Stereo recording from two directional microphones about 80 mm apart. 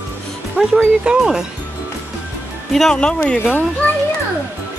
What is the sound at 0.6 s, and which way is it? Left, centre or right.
Speech, centre.